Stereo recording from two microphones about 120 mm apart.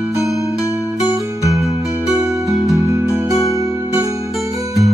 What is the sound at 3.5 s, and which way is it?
Music, 25° right (ahead or behind).